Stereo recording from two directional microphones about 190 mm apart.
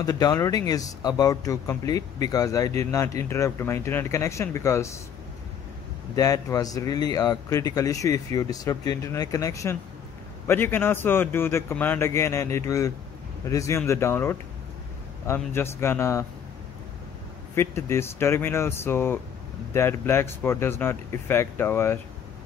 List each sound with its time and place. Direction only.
0.0 s speech: 20° left (ahead or behind)
6.1 s speech: 20° left (ahead or behind)
17.6 s speech: 15° left (ahead or behind)